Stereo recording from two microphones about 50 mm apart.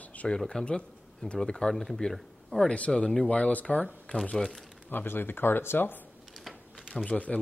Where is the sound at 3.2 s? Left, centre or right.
Left.